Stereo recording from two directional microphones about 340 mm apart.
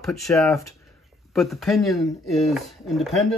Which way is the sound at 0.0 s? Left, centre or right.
Centre.